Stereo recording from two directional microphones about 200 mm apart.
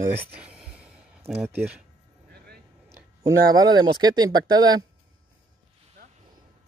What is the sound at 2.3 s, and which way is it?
Vehicle, 50° right (ahead or behind).